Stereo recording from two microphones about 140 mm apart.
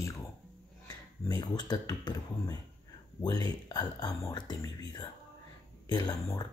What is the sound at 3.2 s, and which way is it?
Speech, 30° left (ahead or behind).